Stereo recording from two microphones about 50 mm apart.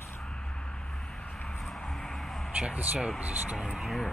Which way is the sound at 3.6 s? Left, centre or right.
Centre.